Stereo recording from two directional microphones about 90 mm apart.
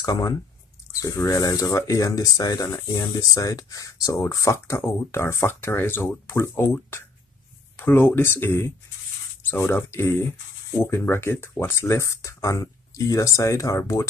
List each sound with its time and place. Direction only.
0.0 s speech: 45° left (ahead or behind)